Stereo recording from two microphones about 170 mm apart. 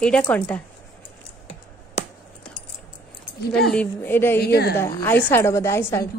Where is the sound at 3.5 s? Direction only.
5° left (ahead or behind).